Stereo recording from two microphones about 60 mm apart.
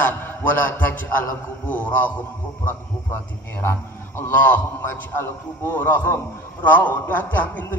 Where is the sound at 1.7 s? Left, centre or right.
Left.